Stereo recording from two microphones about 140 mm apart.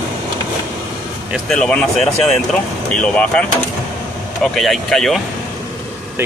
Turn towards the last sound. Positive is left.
turn(degrees=0)  # may be behind; listen again after turning